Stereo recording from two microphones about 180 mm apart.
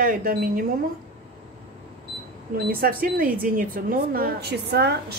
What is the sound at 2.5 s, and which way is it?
Speech, 55° right (ahead or behind).